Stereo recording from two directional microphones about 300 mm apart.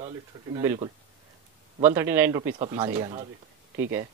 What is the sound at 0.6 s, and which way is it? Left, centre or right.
Speech, centre.